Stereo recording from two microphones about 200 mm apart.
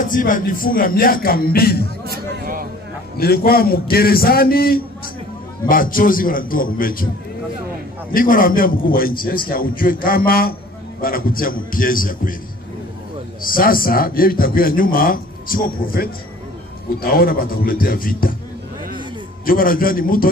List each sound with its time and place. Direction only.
0.0 s a man's voice: 40° left (ahead or behind)
2.0 s speech: 45° right (ahead or behind)
3.2 s a man's voice: 50° left (ahead or behind)
8.1 s a man's voice: 45° left (ahead or behind)
13.4 s a man's voice: 45° left (ahead or behind)
19.4 s a man's voice: 45° left (ahead or behind)